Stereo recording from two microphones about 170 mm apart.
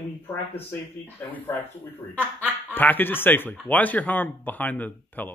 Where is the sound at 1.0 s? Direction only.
10° left (ahead or behind).